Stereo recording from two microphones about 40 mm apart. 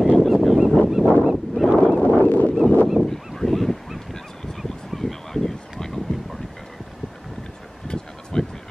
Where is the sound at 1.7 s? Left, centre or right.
Centre.